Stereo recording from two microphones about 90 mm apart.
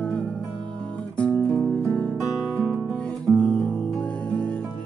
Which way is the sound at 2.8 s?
10° left (ahead or behind).